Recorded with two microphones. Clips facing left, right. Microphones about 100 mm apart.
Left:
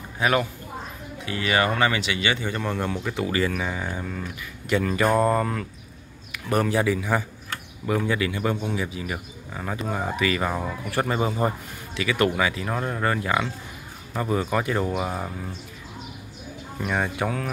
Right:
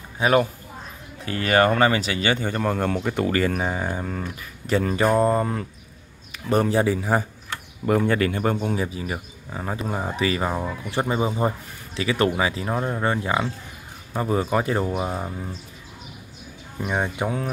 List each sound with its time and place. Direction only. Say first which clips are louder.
0.2 s speech: right 4 dB; 30° right (ahead or behind)
1.2 s speech: right 4 dB; 45° right (ahead or behind)
5.0 s mantra: right 1 dB; 5° right (ahead or behind)
5.3 s speech: right 1 dB; 25° right (ahead or behind)
8.1 s speech: right 3 dB; 45° right (ahead or behind); by 10.5 s 30° right (ahead or behind)
10.9 s speech: right 1 dB; 20° right (ahead or behind)
11.9 s speech: right 1 dB; 30° right (ahead or behind)
16.8 s speech: right 1 dB; 20° right (ahead or behind)